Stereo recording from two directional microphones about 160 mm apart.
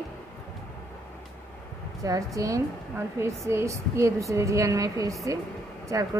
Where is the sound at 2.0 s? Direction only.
20° right (ahead or behind).